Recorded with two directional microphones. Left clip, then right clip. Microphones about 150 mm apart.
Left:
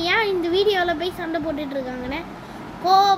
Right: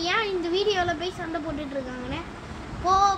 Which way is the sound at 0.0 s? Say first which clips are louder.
Left 5 dB; 20° left (ahead or behind).